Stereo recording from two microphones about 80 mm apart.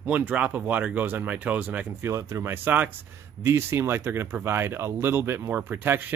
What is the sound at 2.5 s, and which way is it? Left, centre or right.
Speech, right.